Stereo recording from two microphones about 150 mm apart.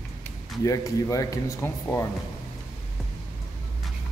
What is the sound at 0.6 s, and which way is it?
Speech, 25° left (ahead or behind).